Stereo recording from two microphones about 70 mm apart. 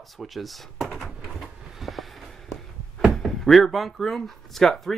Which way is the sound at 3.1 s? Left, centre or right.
Centre.